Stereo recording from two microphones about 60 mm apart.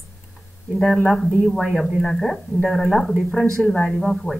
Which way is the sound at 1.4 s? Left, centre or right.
Centre.